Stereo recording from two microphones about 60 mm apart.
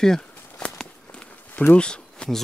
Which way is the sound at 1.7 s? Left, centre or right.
Centre.